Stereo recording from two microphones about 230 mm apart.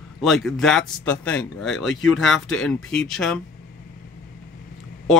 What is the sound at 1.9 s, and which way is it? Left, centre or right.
Speech, left.